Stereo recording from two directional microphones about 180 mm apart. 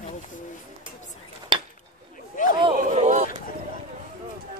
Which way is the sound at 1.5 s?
25° right (ahead or behind).